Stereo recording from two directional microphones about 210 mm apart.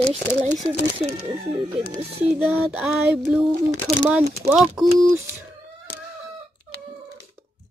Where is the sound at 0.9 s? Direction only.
25° right (ahead or behind).